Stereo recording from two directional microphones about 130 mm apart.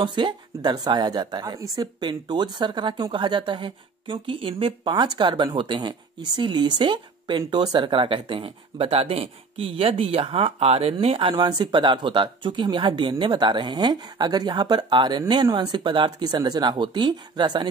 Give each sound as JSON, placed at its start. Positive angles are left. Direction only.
{"t": 0.0, "sound": "speech", "side_deg": -35}